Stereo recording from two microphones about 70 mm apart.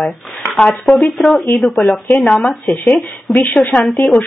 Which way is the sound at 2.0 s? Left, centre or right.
Centre.